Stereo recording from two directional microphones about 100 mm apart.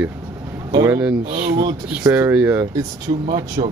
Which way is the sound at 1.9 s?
15° right (ahead or behind).